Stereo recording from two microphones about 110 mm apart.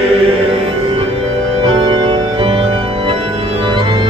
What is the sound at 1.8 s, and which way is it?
Organ, 50° right (ahead or behind).